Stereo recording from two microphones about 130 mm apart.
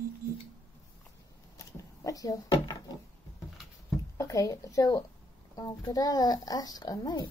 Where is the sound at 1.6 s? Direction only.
25° left (ahead or behind).